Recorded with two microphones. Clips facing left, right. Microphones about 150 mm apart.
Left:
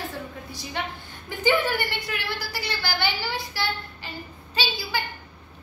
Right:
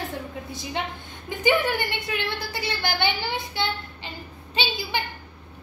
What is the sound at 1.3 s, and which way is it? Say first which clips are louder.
A woman's voice: right 1 dB; 20° right (ahead or behind).